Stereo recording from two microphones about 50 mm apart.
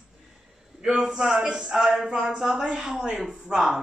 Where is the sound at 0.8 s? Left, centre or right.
Centre.